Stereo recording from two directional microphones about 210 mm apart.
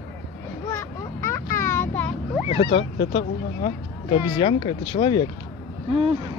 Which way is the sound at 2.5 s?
25° left (ahead or behind).